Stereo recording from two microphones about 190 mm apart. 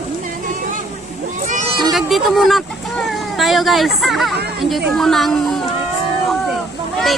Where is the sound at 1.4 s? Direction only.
40° right (ahead or behind).